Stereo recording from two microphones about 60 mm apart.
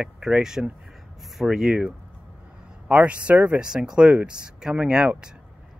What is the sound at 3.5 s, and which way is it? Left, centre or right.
Speech, centre.